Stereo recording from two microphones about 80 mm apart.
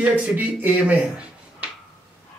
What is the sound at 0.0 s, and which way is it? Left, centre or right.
Speech, centre.